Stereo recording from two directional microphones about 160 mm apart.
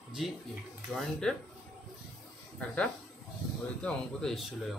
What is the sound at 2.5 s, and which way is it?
Speech, 10° left (ahead or behind).